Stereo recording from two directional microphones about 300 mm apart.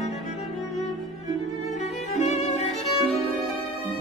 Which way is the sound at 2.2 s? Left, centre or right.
Left.